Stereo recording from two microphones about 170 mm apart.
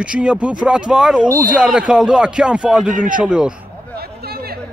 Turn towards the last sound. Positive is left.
turn(degrees=-65)  # may be behind; listen again after turning